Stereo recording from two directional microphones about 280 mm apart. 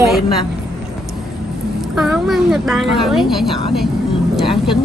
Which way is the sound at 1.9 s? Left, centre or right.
Centre.